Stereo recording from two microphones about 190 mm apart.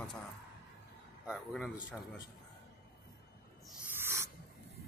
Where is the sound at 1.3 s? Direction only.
Centre (ahead or behind).